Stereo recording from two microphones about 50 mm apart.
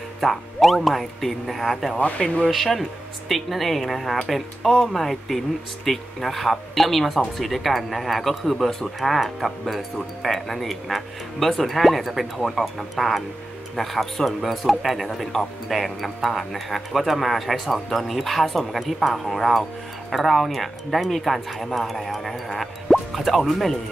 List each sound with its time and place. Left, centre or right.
0.2 s speech: centre
2.0 s speech: left
2.4 s speech: centre